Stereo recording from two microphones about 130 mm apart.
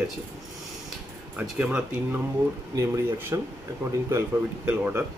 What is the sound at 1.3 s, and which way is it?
Speech, 10° right (ahead or behind).